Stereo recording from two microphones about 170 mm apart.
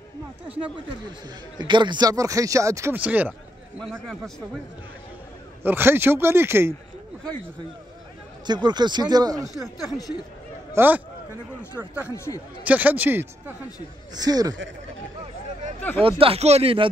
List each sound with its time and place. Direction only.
1.6 s speech: 25° right (ahead or behind); by 3.3 s 10° right (ahead or behind)
3.8 s a man's voice: centre (ahead or behind)
5.6 s speech: 10° right (ahead or behind)
8.5 s speech: 25° right (ahead or behind)
9.5 s speech: 20° left (ahead or behind)
10.7 s speech: 10° right (ahead or behind)
12.6 s speech: 10° right (ahead or behind)
14.2 s speech: 20° right (ahead or behind)
16.0 s speech: 35° right (ahead or behind)